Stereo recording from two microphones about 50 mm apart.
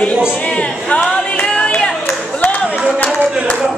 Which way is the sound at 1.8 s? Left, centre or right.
Left.